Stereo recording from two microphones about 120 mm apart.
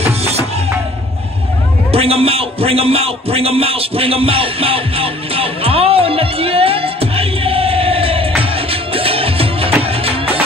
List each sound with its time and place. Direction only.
0.0 s music: 60° right (ahead or behind)
1.9 s a sound: 55° right (ahead or behind)
8.4 s music: 50° right (ahead or behind)